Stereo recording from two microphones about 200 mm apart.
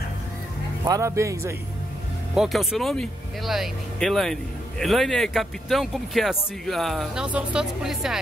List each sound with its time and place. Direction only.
0.8 s speech: 15° right (ahead or behind)
2.3 s speech: centre (ahead or behind)